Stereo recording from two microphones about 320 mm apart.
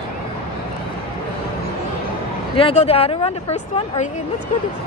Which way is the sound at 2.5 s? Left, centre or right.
Centre.